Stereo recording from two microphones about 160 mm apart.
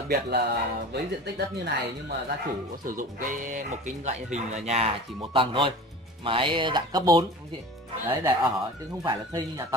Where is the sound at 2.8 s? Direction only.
55° right (ahead or behind).